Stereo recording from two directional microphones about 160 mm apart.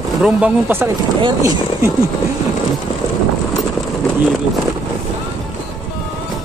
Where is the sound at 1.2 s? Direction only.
20° right (ahead or behind).